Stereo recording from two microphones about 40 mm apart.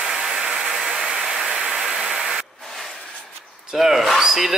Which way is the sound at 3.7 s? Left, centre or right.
Centre.